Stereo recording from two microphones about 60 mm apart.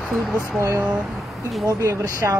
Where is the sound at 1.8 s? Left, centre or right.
Right.